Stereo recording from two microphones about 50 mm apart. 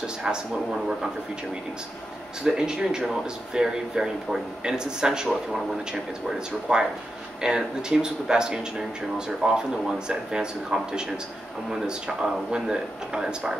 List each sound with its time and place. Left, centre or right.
0.0 s speech: centre
2.4 s speech: centre